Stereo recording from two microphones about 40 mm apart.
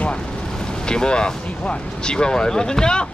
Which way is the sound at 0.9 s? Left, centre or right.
Left.